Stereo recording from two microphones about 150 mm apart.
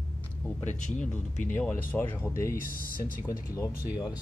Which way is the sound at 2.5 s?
70° left (ahead or behind).